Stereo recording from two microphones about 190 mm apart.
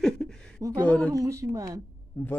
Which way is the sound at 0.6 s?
15° right (ahead or behind).